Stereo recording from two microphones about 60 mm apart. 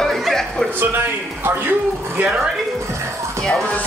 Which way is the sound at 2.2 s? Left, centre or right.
Centre.